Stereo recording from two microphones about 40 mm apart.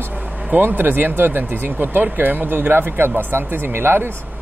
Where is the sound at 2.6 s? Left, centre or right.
Right.